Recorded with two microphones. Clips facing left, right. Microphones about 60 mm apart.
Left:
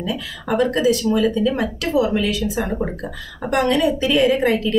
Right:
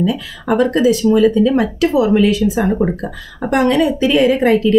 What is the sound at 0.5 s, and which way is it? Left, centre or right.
A woman's voice, right.